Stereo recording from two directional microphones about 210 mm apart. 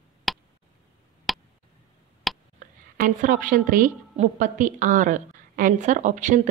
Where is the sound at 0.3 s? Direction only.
Centre (ahead or behind).